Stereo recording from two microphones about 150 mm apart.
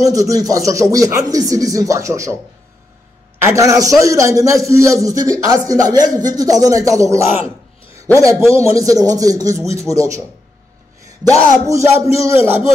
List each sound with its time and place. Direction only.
0.0 s speech: 20° right (ahead or behind)
3.4 s speech: 20° right (ahead or behind)
7.4 s a sound: 40° left (ahead or behind)
8.1 s speech: 20° right (ahead or behind)
11.6 s speech: 20° right (ahead or behind)